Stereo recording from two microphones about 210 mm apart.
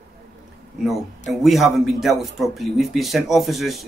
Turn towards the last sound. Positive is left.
turn(degrees=0)  # may be behind; listen again after turning